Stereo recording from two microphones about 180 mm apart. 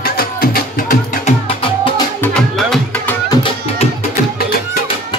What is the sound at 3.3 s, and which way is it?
Music, 30° left (ahead or behind).